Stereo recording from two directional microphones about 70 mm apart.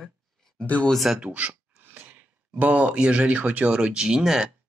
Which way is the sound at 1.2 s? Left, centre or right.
Right.